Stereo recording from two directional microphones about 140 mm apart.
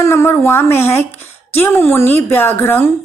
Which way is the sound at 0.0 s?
20° left (ahead or behind).